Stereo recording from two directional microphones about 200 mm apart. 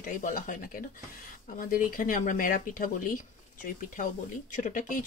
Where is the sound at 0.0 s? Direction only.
40° left (ahead or behind).